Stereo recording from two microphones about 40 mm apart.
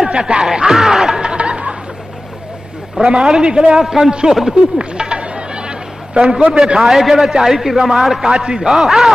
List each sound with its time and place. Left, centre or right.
0.0 s speech: right
1.2 s a sound: right
3.0 s a man's voice: right
3.8 s a man's voice: centre
4.6 s a sound: right
6.8 s a man's voice: centre